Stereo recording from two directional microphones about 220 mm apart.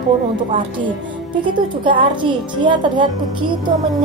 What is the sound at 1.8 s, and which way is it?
A woman's voice, 20° right (ahead or behind).